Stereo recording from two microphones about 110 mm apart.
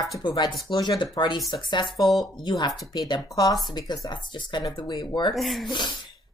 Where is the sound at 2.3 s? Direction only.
35° left (ahead or behind).